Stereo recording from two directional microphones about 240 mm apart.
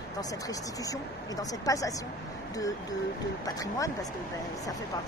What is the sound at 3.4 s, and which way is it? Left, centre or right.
Speech, centre.